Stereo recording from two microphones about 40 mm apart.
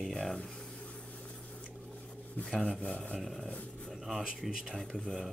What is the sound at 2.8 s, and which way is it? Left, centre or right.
Speech, left.